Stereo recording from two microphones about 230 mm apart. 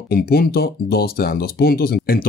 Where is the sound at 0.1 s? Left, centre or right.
Left.